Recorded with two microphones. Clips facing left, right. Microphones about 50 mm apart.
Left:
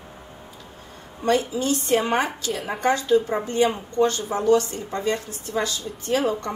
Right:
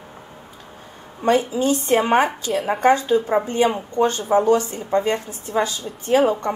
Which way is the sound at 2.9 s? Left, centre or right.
Right.